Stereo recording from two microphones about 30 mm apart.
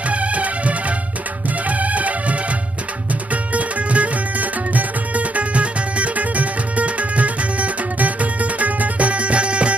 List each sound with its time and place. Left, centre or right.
0.1 s music: right
3.5 s music: right